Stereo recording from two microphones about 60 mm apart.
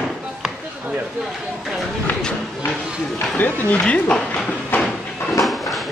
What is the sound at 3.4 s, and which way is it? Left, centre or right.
Speech, left.